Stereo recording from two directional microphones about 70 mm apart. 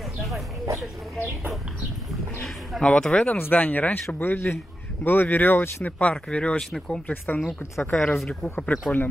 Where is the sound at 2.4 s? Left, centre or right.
Centre.